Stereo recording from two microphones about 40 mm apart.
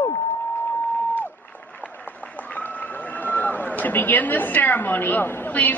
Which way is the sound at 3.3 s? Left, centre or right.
Left.